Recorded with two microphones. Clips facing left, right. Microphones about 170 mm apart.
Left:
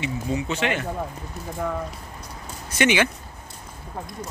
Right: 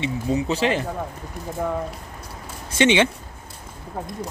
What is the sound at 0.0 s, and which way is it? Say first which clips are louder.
Speech: right 3 dB; 35° right (ahead or behind).